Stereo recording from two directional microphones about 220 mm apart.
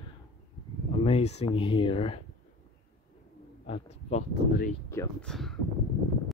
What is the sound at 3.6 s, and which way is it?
Speech, 25° left (ahead or behind).